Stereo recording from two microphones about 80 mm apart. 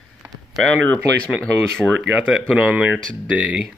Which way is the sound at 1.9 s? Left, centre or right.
Centre.